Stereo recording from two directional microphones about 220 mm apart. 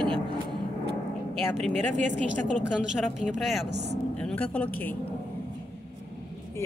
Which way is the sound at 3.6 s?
50° right (ahead or behind).